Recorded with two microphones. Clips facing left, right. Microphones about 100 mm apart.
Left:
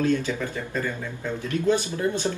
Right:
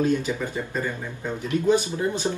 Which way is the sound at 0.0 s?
15° right (ahead or behind).